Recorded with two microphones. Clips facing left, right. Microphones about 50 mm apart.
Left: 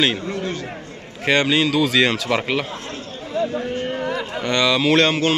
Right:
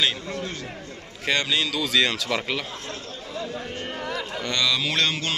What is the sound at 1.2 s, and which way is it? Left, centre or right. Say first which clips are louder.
Speech: left 7 dB; left.